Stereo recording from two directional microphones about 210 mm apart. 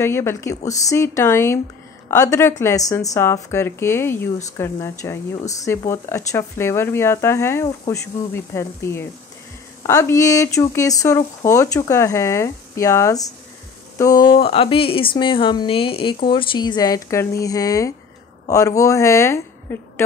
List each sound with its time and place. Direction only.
0.0 s speech: 10° left (ahead or behind)
14.3 s speech: 25° left (ahead or behind); by 20.1 s 10° left (ahead or behind)